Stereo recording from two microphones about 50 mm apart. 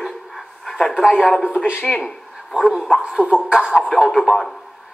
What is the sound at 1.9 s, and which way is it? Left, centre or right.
A man's voice, centre.